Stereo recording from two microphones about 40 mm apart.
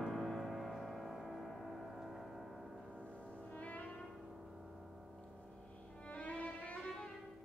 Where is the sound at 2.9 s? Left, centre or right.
Left.